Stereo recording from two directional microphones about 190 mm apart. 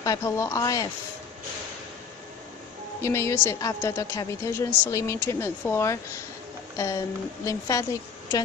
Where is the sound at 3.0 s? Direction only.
15° left (ahead or behind).